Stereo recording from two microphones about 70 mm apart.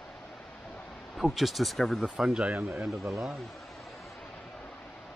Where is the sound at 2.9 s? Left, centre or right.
Right.